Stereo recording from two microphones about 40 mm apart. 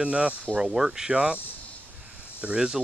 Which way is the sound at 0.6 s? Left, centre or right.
Centre.